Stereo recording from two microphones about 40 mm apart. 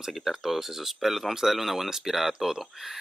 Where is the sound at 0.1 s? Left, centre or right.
Centre.